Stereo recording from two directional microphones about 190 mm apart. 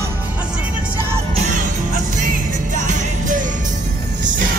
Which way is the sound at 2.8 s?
40° right (ahead or behind).